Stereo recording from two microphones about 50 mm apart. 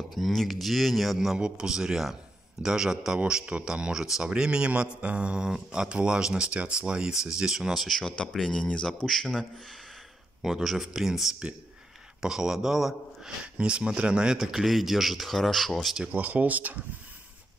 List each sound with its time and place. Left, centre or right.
0.1 s a man's voice: centre
7.7 s speech: centre
10.4 s a man's voice: centre
13.4 s speech: right; by 15.9 s centre
16.1 s speech: right